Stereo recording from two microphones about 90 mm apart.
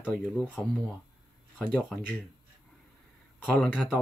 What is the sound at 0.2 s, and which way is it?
Speech, 10° left (ahead or behind).